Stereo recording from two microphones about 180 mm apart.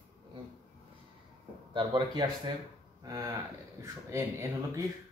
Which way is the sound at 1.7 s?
25° right (ahead or behind).